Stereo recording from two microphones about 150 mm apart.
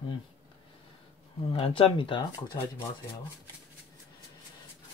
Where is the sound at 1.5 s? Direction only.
40° left (ahead or behind).